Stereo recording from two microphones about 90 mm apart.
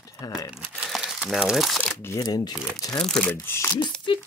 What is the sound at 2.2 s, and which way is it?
Speech, 50° left (ahead or behind).